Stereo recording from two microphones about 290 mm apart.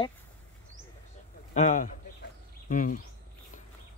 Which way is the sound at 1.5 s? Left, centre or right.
Left.